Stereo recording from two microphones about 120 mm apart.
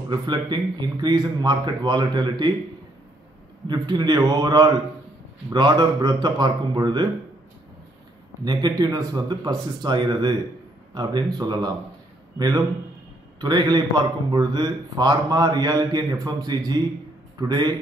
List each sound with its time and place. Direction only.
0.1 s speech: 35° right (ahead or behind)
3.6 s speech: 35° right (ahead or behind)
8.5 s speech: 35° right (ahead or behind)
11.3 s speech: 35° right (ahead or behind)